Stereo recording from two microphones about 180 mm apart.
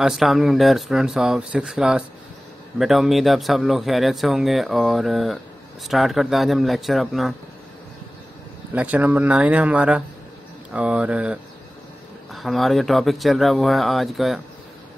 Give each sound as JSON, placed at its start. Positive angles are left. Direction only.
{"t": 0.0, "sound": "speech", "side_deg": 0}
{"t": 8.7, "sound": "speech", "side_deg": -10}